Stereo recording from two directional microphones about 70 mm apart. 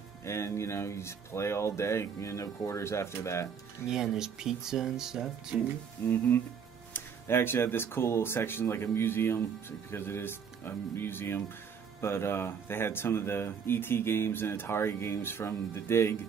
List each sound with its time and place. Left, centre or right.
0.2 s speech: left
3.9 s speech: centre
6.0 s speech: left